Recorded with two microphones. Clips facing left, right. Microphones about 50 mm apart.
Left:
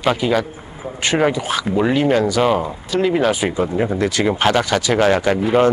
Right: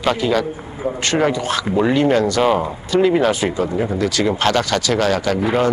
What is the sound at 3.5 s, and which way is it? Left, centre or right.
Speech, centre.